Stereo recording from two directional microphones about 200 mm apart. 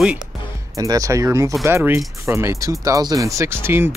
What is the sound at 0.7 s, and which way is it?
Speech, 15° right (ahead or behind).